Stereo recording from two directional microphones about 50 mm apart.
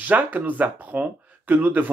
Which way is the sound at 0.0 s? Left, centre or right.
Right.